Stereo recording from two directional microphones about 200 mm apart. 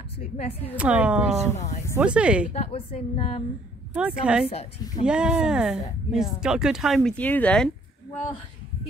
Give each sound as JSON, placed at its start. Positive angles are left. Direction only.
{"t": 0.7, "sound": "speech", "side_deg": -5}
{"t": 2.5, "sound": "a woman's voice", "side_deg": 30}
{"t": 3.9, "sound": "speech", "side_deg": -5}
{"t": 4.5, "sound": "a woman's voice", "side_deg": 30}
{"t": 5.0, "sound": "speech", "side_deg": -5}